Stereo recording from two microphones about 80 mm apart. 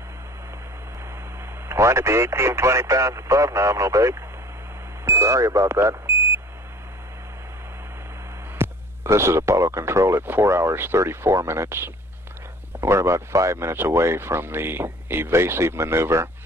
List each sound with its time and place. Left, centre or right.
1.7 s speech: right
8.5 s speech: right